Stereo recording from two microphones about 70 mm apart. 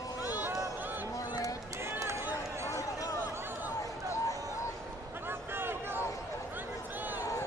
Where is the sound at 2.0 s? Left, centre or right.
Right.